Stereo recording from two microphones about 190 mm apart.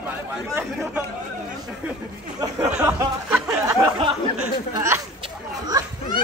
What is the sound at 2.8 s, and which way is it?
Speech, 10° right (ahead or behind).